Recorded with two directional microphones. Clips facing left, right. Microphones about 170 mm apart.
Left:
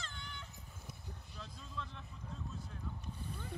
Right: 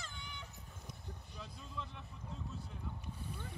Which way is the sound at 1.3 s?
10° right (ahead or behind).